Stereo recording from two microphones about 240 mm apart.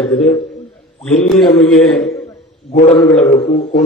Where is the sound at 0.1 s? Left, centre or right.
Centre.